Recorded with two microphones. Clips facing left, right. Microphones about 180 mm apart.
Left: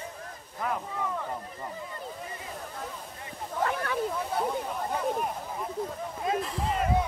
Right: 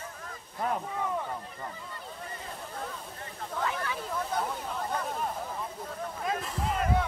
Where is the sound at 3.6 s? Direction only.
55° left (ahead or behind).